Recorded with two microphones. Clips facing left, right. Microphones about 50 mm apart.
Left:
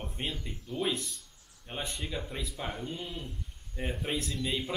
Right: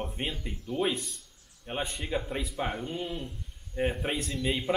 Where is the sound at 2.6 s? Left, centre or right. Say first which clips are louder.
Right 5 dB; centre.